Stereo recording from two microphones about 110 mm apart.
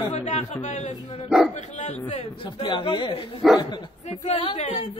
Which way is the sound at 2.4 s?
45° left (ahead or behind).